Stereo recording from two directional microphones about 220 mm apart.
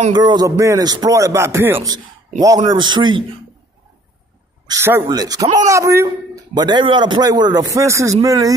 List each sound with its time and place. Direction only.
0.1 s a man's voice: 20° right (ahead or behind)
4.6 s a man's voice: 10° right (ahead or behind)